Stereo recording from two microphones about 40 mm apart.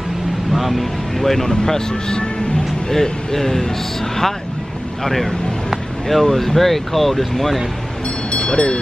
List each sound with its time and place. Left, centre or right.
0.5 s speech: centre
1.7 s speech: centre
2.9 s speech: centre
5.0 s speech: centre
8.5 s speech: left